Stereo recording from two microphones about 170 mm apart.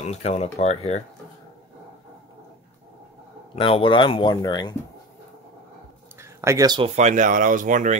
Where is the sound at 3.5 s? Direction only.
30° left (ahead or behind).